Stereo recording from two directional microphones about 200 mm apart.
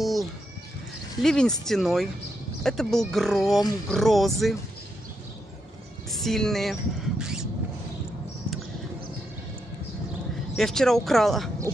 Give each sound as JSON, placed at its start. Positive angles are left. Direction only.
{"t": 0.0, "sound": "a sound", "side_deg": 0}
{"t": 1.2, "sound": "speech", "side_deg": 5}
{"t": 6.0, "sound": "speech", "side_deg": 0}
{"t": 10.5, "sound": "speech", "side_deg": 0}